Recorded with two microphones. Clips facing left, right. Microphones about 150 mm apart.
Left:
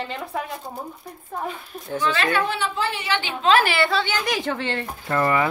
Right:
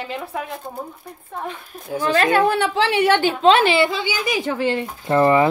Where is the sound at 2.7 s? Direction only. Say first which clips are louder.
Right 8 dB; 80° right; by 3.5 s 45° right (ahead or behind).